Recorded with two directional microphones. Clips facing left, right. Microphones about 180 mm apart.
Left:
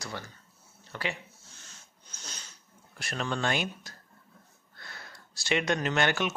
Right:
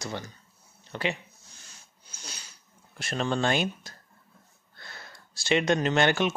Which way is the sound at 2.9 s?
25° right (ahead or behind).